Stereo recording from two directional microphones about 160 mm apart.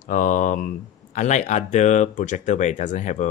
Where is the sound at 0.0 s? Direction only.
55° left (ahead or behind).